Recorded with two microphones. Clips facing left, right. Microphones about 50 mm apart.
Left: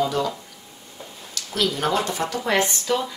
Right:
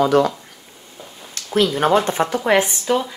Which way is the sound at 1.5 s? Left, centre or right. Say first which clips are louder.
Right 7 dB; right.